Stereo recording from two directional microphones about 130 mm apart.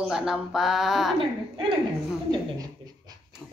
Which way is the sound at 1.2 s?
40° right (ahead or behind).